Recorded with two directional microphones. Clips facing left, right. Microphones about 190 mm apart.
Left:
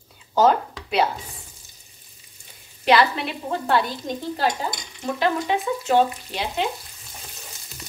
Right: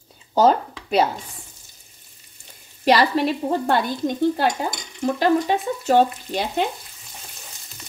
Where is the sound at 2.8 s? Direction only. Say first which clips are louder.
Right 2 dB; 40° right (ahead or behind).